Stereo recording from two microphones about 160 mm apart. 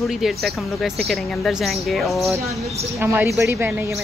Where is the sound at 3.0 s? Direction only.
15° right (ahead or behind).